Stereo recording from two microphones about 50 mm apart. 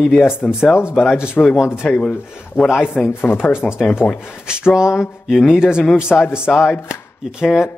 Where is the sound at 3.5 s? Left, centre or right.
Centre.